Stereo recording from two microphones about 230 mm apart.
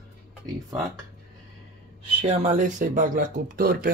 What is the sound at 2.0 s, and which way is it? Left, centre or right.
Speech, right.